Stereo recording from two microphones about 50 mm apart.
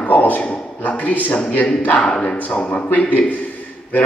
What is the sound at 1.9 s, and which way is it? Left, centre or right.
A man's voice, left.